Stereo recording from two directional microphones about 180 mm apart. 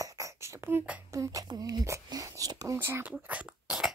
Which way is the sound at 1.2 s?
20° right (ahead or behind).